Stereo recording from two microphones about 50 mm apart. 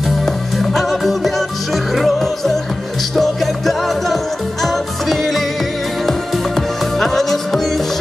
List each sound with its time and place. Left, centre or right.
0.2 s music: centre